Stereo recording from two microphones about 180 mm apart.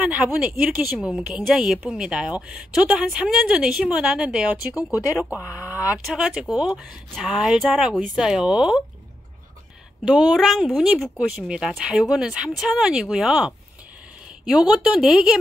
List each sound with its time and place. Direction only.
0.0 s a woman's voice: 5° right (ahead or behind)
4.9 s speech: 20° left (ahead or behind)
5.9 s a woman's voice: 5° right (ahead or behind)
10.0 s a woman's voice: centre (ahead or behind)
14.7 s a woman's voice: 5° right (ahead or behind)